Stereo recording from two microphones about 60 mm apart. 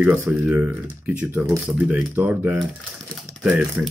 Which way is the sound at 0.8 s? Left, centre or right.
Right.